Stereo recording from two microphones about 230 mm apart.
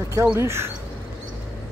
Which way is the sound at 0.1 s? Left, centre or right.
Centre.